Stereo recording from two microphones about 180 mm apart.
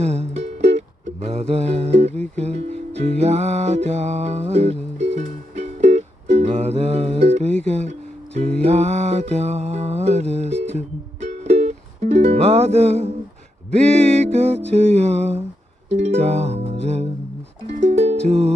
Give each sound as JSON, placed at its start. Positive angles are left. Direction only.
{"t": 0.0, "sound": "music", "side_deg": -35}
{"t": 7.6, "sound": "speech", "side_deg": -35}
{"t": 8.5, "sound": "music", "side_deg": -35}